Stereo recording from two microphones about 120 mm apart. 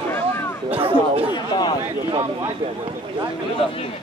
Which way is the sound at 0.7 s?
50° right (ahead or behind).